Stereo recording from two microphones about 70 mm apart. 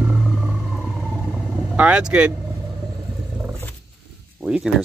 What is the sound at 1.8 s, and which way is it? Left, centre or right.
Speech, centre.